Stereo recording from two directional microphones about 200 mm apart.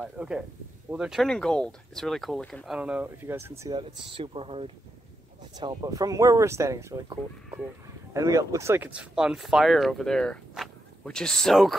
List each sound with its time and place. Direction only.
0.0 s speech: 5° right (ahead or behind)